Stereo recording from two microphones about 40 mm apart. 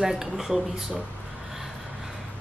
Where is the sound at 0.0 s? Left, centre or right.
Centre.